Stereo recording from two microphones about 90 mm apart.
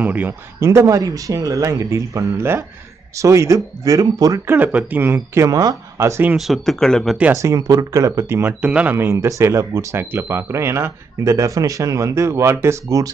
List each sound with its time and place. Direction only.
0.0 s speech: 20° right (ahead or behind)
0.3 s speech: 30° right (ahead or behind)
4.5 s speech: 20° right (ahead or behind)
6.3 s speech: centre (ahead or behind)
7.3 s speech: 40° right (ahead or behind)
8.5 s speech: 15° right (ahead or behind)
8.9 s speech: 30° right (ahead or behind)